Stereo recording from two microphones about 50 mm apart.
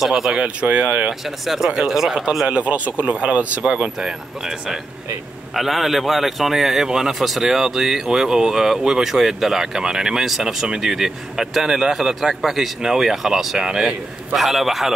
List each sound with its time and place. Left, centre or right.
0.3 s speech: right
1.4 s a man's voice: centre
2.4 s speech: right
3.7 s a man's voice: centre
14.3 s a man's voice: centre